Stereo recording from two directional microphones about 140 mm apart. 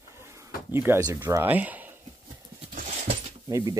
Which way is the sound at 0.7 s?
15° right (ahead or behind).